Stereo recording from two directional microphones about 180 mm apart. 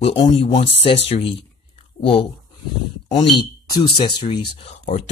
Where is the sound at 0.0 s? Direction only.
30° left (ahead or behind).